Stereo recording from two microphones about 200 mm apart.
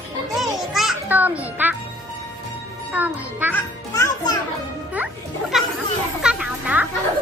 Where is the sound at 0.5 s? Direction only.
Centre (ahead or behind).